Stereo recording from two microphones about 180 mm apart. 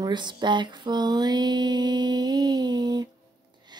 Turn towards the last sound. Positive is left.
turn(degrees=-20)  # may be behind; listen again after turning